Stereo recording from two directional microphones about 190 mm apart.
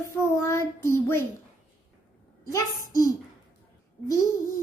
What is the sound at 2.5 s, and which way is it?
Child singing, 20° left (ahead or behind).